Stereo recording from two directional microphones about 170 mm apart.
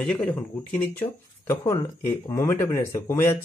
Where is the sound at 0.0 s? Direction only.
10° left (ahead or behind).